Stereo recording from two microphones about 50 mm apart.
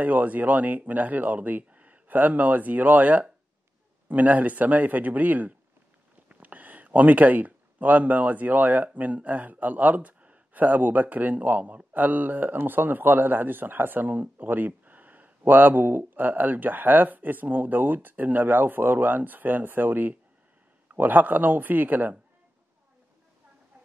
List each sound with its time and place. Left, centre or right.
0.0 s speech: right